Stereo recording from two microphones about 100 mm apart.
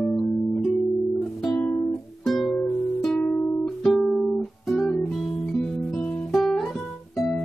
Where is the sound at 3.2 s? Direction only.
20° left (ahead or behind).